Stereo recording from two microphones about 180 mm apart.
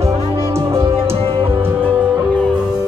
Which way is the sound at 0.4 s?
15° right (ahead or behind).